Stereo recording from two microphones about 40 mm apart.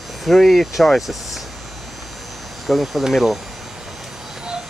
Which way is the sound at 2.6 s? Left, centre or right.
Centre.